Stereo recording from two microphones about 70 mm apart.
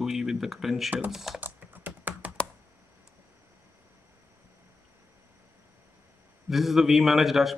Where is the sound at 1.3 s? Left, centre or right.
Right.